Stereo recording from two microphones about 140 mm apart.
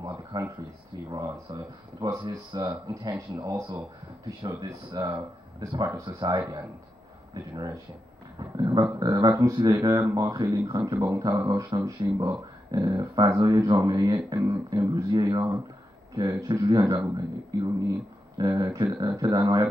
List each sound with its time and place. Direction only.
0.0 s speech: 30° right (ahead or behind)
7.5 s speech: 25° right (ahead or behind)